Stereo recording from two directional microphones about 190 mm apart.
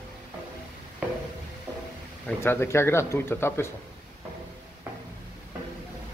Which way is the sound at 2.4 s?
15° left (ahead or behind).